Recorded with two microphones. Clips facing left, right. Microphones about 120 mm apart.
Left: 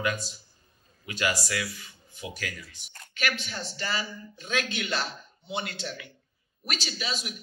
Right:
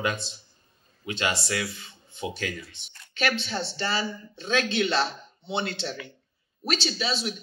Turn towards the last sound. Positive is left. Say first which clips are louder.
# right 6 dB
turn(degrees=-30)  # may be behind; listen again after turning